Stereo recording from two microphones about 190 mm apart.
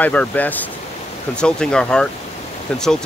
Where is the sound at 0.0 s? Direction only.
5° left (ahead or behind).